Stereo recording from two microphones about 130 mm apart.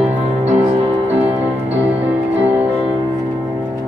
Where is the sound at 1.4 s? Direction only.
15° right (ahead or behind).